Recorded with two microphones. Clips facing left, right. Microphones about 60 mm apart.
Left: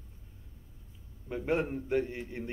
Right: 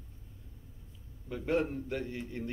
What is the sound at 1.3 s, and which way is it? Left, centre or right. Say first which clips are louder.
Speech: even; left.